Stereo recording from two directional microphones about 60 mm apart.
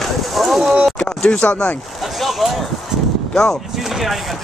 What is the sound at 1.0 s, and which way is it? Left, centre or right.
Speech, left.